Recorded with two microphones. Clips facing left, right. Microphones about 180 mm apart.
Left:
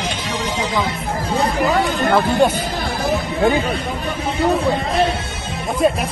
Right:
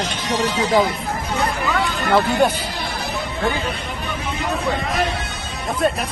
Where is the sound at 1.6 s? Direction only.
35° left (ahead or behind).